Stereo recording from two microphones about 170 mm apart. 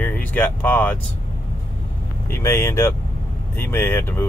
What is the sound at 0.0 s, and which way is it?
Speech, 10° left (ahead or behind).